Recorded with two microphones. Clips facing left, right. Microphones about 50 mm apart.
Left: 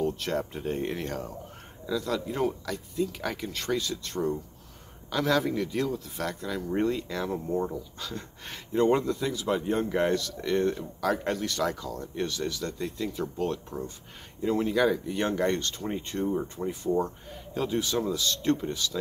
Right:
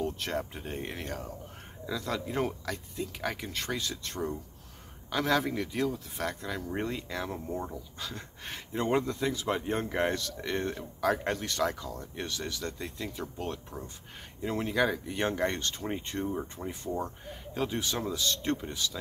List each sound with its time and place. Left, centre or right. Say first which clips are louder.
0.0 s a sound: left 4 dB; right
0.5 s speech: left 7 dB; centre
1.9 s speech: left 4 dB; right
3.1 s speech: left 2 dB; right
16.6 s speech: left 6 dB; centre
17.6 s speech: left 4 dB; right